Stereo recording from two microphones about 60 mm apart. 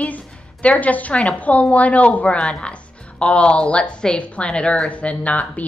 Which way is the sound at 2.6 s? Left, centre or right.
Centre.